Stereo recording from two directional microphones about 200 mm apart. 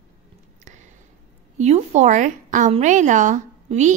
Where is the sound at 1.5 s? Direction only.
35° right (ahead or behind).